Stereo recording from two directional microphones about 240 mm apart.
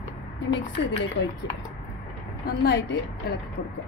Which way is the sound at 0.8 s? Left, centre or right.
Left.